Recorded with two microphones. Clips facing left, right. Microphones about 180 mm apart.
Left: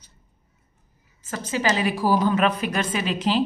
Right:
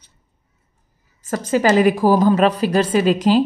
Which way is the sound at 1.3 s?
45° right (ahead or behind).